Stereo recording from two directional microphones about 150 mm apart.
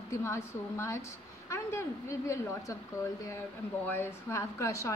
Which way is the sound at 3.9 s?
15° left (ahead or behind).